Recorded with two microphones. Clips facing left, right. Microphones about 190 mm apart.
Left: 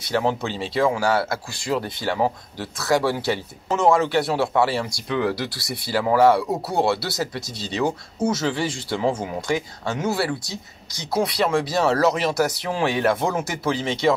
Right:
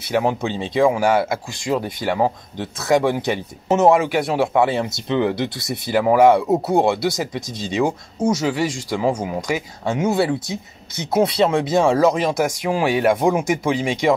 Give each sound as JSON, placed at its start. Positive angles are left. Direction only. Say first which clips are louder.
{"t": 0.1, "sound": "speech", "louder": "right 3 dB", "side_deg": -15}